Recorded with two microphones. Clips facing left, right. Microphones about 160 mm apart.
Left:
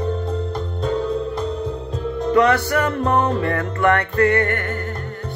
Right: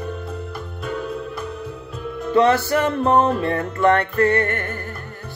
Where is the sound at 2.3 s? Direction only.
30° right (ahead or behind).